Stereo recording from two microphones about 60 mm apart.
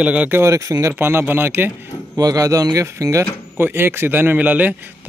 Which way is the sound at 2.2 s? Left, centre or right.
Right.